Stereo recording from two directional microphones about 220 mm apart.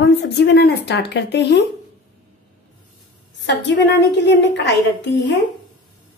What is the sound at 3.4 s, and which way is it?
A woman's voice, 55° left (ahead or behind).